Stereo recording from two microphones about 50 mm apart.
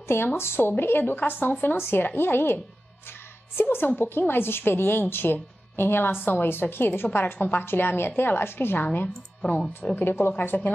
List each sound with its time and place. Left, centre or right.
0.4 s a woman's voice: left
9.4 s speech: centre
9.9 s a woman's voice: left